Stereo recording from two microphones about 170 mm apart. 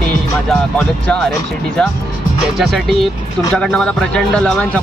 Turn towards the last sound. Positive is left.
turn(degrees=5)  # may be behind; listen again after turning